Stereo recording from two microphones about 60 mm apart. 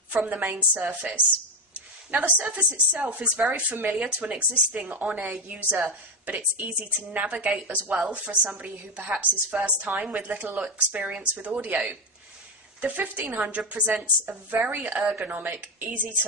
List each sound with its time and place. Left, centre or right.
0.1 s speech: right